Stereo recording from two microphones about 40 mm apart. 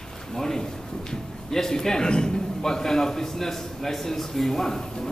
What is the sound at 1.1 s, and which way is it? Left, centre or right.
A man's voice, centre.